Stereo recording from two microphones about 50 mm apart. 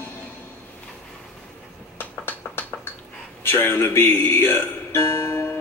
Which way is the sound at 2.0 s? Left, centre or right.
Left.